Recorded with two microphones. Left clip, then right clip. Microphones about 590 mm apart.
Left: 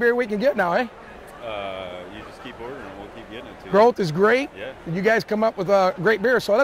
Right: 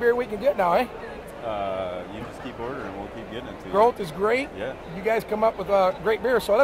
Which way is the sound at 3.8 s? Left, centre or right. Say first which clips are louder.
Left 4 dB; left.